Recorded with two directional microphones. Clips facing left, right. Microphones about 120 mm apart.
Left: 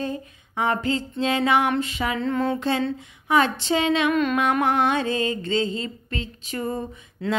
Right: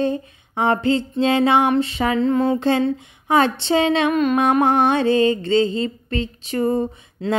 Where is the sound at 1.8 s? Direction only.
35° right (ahead or behind).